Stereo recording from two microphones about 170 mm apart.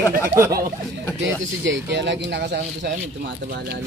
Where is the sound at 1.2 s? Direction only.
90° right.